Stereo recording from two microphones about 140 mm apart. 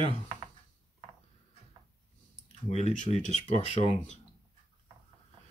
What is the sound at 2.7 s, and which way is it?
Speech, 55° left (ahead or behind).